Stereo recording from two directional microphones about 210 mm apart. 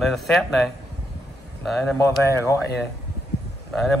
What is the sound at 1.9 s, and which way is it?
Speech, 15° left (ahead or behind).